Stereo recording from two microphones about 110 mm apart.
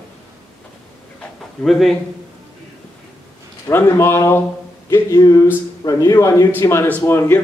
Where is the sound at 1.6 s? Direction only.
Centre (ahead or behind).